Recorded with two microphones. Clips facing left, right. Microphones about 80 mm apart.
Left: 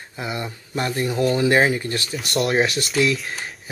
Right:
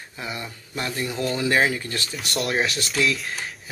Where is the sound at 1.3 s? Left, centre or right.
Left.